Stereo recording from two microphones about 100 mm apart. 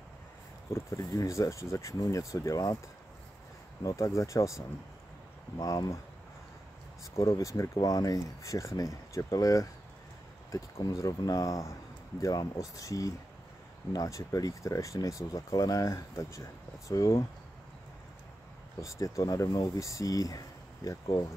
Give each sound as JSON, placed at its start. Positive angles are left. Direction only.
{"t": 0.7, "sound": "speech", "side_deg": 30}
{"t": 3.8, "sound": "speech", "side_deg": 30}
{"t": 5.6, "sound": "speech", "side_deg": 35}
{"t": 7.2, "sound": "speech", "side_deg": 35}
{"t": 18.8, "sound": "speech", "side_deg": 30}